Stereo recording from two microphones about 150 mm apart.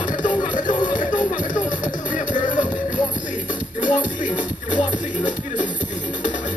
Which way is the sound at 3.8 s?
60° left (ahead or behind).